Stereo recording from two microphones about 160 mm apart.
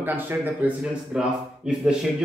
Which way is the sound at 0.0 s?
10° right (ahead or behind).